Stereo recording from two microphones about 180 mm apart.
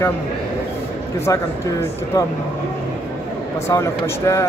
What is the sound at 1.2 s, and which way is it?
Speech, 15° left (ahead or behind).